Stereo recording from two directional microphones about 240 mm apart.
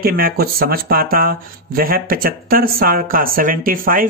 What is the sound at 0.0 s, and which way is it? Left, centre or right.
Speech, right.